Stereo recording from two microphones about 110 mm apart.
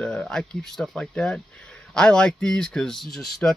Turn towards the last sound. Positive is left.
turn(degrees=0)  # may be behind; listen again after turning